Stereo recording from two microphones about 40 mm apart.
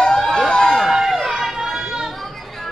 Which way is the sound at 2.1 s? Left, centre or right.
Centre.